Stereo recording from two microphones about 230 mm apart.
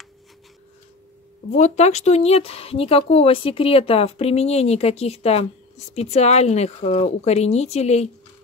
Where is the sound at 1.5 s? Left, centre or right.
Left.